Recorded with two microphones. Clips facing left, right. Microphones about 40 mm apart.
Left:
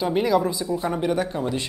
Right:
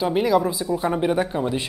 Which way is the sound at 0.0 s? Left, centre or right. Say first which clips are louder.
Right 1 dB; centre.